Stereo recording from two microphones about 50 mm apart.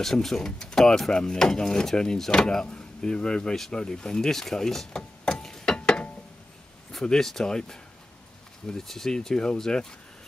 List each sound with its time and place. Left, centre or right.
0.0 s speech: centre
5.2 s clock: centre
5.8 s a sound: left
7.1 s speech: centre